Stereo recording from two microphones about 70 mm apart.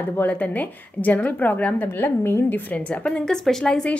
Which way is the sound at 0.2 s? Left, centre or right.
Left.